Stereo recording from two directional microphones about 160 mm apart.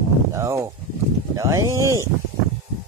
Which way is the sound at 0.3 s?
20° right (ahead or behind).